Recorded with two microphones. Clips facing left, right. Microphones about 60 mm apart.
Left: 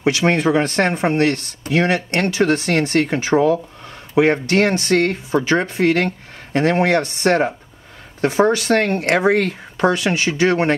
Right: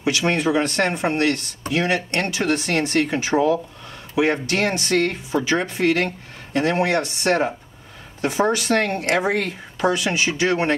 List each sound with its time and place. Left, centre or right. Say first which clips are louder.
0.0 s speech: left 4 dB; left